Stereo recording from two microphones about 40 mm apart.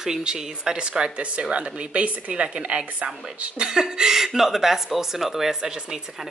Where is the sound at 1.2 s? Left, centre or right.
Right.